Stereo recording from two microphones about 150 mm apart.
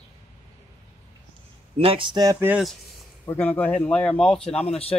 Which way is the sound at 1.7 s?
35° right (ahead or behind).